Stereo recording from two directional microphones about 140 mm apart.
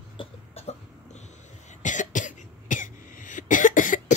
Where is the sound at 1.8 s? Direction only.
65° left (ahead or behind).